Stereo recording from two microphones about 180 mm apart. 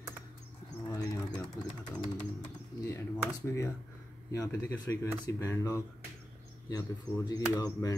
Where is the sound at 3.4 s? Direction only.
15° left (ahead or behind).